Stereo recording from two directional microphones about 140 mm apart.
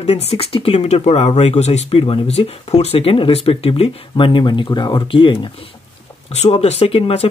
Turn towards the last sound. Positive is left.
turn(degrees=45)  # may be behind; listen again after turning